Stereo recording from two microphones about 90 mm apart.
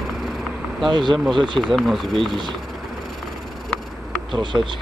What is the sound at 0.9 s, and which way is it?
Speech, 60° right (ahead or behind).